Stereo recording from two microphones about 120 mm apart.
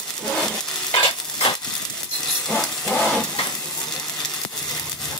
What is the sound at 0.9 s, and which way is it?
Stir, 45° left (ahead or behind).